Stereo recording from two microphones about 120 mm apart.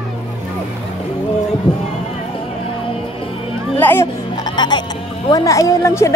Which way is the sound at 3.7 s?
20° left (ahead or behind).